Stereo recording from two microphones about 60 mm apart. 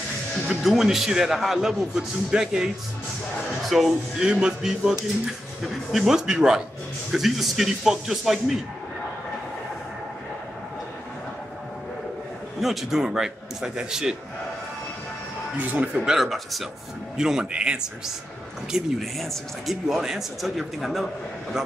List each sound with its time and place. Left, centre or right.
0.5 s a man's voice: centre
4.2 s a man's voice: centre
12.5 s a man's voice: centre
15.5 s a man's voice: right
18.7 s speech: centre